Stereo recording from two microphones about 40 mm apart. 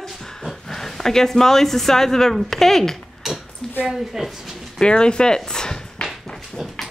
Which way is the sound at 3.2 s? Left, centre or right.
Centre.